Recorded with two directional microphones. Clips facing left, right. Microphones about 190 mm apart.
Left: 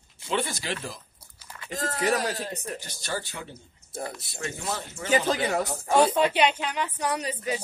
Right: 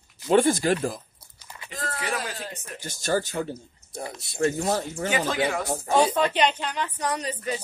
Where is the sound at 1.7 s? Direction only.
40° left (ahead or behind).